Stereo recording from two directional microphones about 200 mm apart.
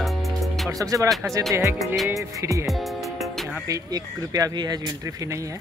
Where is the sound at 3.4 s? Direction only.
15° right (ahead or behind).